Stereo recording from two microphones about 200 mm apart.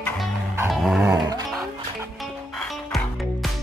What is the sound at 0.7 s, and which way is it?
Dog, centre (ahead or behind).